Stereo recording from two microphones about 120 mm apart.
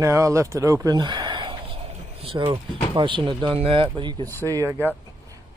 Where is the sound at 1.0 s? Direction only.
40° right (ahead or behind).